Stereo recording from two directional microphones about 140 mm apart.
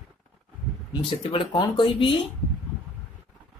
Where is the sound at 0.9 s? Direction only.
35° left (ahead or behind).